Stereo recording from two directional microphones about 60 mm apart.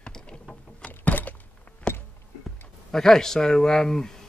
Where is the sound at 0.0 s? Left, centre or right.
Centre.